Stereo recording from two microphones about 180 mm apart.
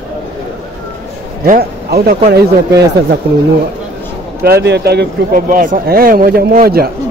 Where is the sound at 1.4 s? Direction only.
55° right (ahead or behind).